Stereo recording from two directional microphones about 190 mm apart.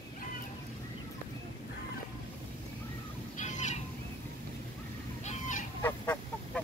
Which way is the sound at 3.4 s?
40° left (ahead or behind).